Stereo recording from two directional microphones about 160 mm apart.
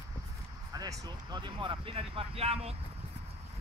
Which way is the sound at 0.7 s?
20° right (ahead or behind).